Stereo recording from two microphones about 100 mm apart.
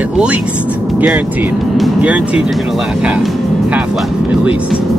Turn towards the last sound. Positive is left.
turn(degrees=-10)  # may be behind; listen again after turning